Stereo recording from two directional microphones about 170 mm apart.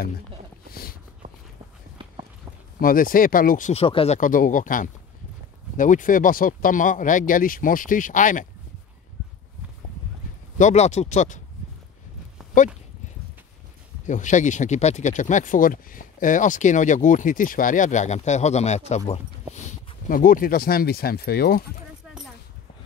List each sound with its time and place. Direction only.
0.7 s a sound: 65° left (ahead or behind)
1.2 s walk: 55° right (ahead or behind)
2.0 s walk: 30° right (ahead or behind)
2.8 s speech: 55° left (ahead or behind)
3.7 s speech: 35° left (ahead or behind)
4.2 s speech: 50° left (ahead or behind)
10.6 s speech: 40° left (ahead or behind)
14.0 s speech: 45° left (ahead or behind); by 21.6 s 65° left (ahead or behind)